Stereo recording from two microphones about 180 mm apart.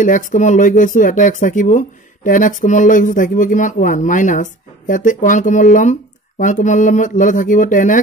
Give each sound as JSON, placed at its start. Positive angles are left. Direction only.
{"t": 0.0, "sound": "speech", "side_deg": 45}